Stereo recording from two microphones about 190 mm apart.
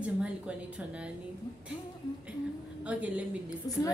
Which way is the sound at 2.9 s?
5° right (ahead or behind).